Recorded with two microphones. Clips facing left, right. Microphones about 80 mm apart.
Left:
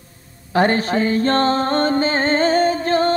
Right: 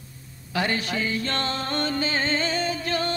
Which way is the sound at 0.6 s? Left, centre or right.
Left.